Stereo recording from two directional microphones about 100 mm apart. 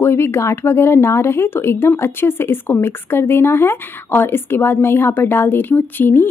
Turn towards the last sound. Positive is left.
turn(degrees=20)  # may be behind; listen again after turning